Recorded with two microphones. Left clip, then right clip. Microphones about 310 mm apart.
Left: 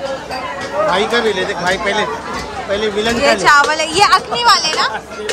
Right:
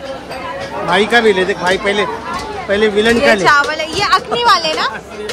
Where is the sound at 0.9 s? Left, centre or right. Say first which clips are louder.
Right 7 dB; right.